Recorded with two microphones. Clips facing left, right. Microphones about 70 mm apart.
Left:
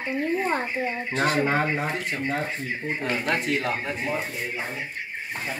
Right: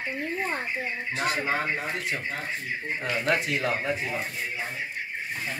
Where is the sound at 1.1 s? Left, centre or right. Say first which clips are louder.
Left 5 dB; left.